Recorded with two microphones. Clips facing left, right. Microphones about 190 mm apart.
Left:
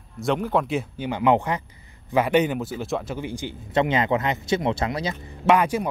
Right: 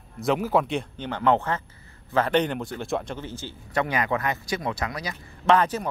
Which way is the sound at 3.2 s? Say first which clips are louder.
Left 5 dB; 15° left (ahead or behind).